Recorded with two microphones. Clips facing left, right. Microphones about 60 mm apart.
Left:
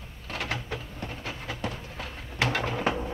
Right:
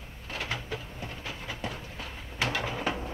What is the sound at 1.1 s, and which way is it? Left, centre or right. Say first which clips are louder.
Train: left 3 dB; left.